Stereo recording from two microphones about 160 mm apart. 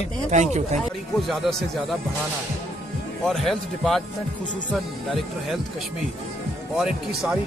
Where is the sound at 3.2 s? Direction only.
Centre (ahead or behind).